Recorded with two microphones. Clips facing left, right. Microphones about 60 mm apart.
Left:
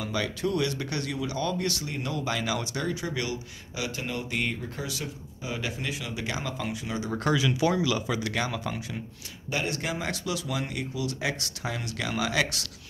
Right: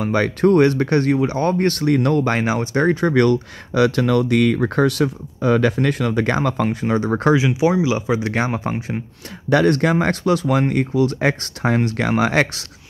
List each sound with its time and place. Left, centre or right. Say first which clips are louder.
0.0 s speech: right 12 dB; right
2.4 s speech: right 12 dB; right
7.3 s speech: right 8 dB; right
9.5 s speech: right 15 dB; right